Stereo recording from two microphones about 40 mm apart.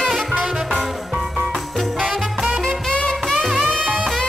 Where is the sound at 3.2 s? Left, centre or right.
Centre.